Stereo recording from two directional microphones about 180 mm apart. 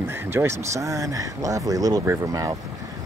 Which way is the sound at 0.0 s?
15° right (ahead or behind).